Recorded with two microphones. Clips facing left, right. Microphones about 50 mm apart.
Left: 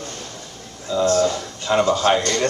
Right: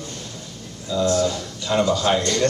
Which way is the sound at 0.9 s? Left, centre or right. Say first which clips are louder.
Left 2 dB; left.